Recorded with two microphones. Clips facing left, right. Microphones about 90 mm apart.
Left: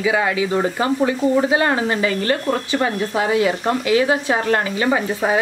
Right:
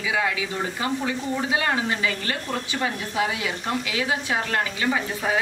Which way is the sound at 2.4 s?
50° left (ahead or behind).